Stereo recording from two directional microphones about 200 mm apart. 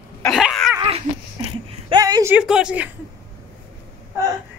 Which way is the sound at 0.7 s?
25° right (ahead or behind).